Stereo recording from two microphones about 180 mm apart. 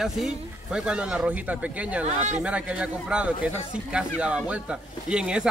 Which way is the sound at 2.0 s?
40° right (ahead or behind).